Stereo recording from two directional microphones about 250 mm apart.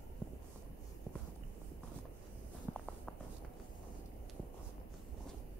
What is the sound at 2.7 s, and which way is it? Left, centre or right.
Walk, centre.